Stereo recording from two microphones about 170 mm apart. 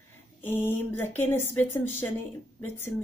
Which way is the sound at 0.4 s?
10° left (ahead or behind).